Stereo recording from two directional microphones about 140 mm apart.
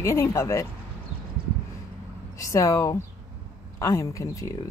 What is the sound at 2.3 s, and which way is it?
Speech, 20° left (ahead or behind).